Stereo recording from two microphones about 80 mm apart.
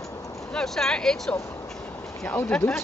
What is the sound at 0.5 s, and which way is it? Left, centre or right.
Speech, centre.